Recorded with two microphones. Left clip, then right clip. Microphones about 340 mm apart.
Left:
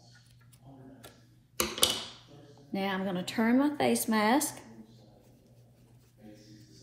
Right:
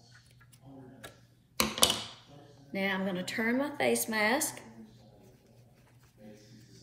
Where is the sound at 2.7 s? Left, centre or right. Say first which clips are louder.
Even; centre.